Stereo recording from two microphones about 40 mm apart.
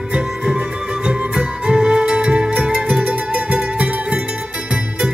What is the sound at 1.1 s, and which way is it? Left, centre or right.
Music, centre.